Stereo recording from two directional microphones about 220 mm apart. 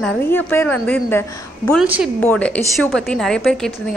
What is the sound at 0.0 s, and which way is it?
A woman's voice, 10° left (ahead or behind).